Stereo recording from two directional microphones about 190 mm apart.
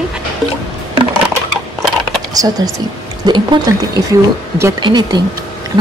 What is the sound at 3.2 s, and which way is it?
Speech, 25° right (ahead or behind).